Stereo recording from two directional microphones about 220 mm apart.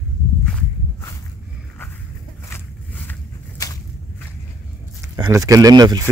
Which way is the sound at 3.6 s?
15° left (ahead or behind).